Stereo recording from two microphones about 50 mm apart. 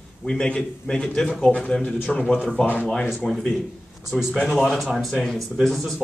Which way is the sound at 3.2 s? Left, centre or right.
Centre.